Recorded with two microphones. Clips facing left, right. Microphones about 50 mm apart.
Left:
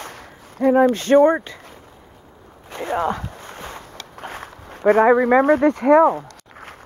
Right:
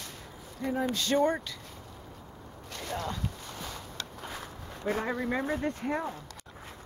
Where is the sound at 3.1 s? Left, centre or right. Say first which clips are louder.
Left 10 dB; left.